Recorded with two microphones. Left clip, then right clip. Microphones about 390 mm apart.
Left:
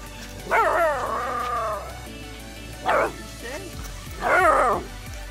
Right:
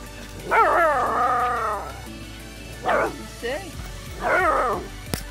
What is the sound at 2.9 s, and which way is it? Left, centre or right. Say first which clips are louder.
Music: even; centre.